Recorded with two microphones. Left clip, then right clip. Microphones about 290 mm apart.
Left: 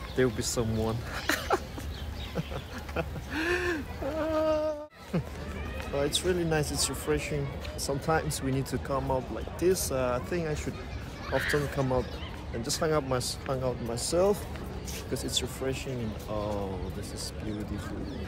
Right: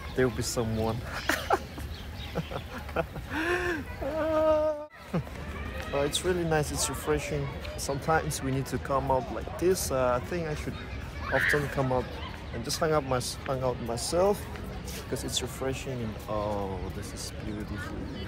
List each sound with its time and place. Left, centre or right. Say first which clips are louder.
0.1 s speech: even; centre
2.3 s a sound: right 2 dB; centre
6.1 s speech: right 1 dB; centre
11.2 s speech: right 3 dB; centre
11.7 s speech: right 1 dB; centre